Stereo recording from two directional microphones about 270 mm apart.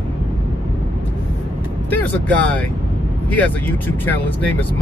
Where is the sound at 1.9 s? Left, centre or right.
Centre.